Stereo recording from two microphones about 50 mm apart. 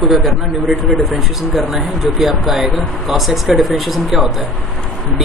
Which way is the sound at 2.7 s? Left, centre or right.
Centre.